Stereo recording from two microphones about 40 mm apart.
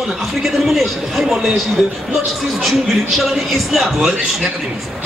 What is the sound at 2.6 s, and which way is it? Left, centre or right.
A man's voice, centre.